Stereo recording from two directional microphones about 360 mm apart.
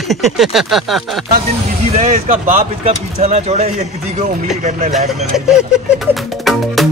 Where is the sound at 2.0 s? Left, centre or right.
Right.